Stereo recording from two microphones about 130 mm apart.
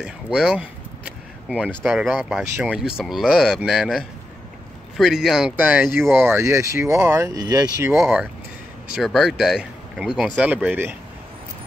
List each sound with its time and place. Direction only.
0.0 s a sound: centre (ahead or behind)
1.8 s speech: centre (ahead or behind)
5.6 s speech: 10° right (ahead or behind)
8.9 s speech: centre (ahead or behind)